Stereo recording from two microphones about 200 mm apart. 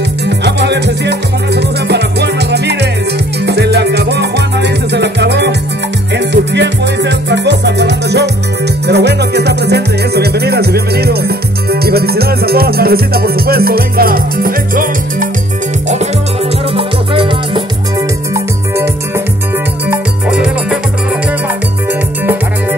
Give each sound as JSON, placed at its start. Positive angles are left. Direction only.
{"t": 0.4, "sound": "music", "side_deg": -60}
{"t": 16.7, "sound": "music", "side_deg": -25}
{"t": 18.3, "sound": "music", "side_deg": -15}
{"t": 22.2, "sound": "music", "side_deg": -10}